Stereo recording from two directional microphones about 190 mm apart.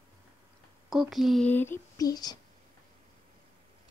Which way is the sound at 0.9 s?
Centre (ahead or behind).